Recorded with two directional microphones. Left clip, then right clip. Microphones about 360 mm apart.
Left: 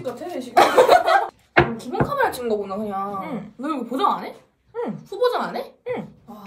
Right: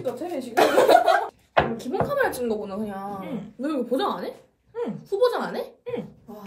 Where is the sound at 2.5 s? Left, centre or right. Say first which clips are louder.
Left 4 dB; left.